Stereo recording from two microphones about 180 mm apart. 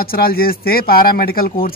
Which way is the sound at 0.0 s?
55° left (ahead or behind).